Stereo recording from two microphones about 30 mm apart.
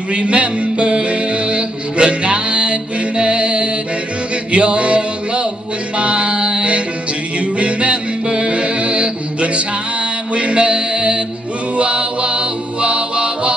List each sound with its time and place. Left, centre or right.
0.1 s music: right
5.9 s mantra: right
7.3 s music: right